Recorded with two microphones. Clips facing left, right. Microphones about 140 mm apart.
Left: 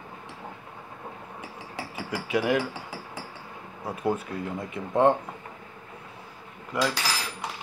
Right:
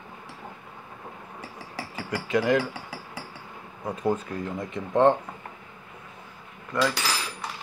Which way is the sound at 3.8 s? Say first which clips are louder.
Right 1 dB; 5° left (ahead or behind).